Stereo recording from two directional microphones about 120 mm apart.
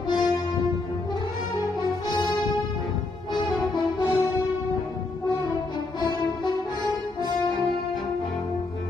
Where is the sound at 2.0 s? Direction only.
40° left (ahead or behind).